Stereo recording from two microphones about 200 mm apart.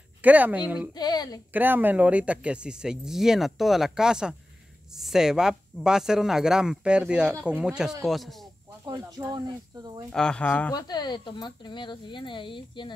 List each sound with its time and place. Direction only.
0.2 s speech: 10° right (ahead or behind)
0.9 s speech: 20° left (ahead or behind)
1.5 s speech: 10° right (ahead or behind)
8.8 s speech: 20° right (ahead or behind)
10.1 s speech: 5° left (ahead or behind)
10.7 s speech: 20° left (ahead or behind)